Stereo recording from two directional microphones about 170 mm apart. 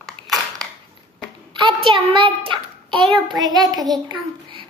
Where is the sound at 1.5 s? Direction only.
30° right (ahead or behind).